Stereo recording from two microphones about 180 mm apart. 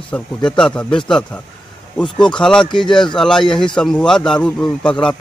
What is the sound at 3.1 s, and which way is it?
A man's voice, 5° left (ahead or behind).